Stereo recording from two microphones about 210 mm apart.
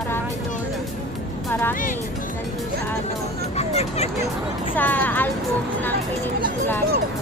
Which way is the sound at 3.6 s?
30° left (ahead or behind).